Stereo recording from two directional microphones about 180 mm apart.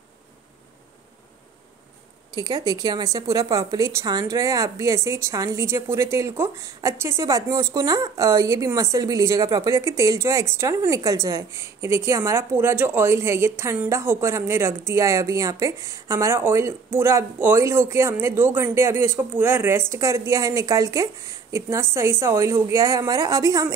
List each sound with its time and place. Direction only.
2.3 s a woman's voice: 20° right (ahead or behind)